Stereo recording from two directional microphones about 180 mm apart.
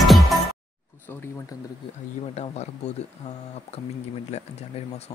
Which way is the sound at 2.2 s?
35° left (ahead or behind).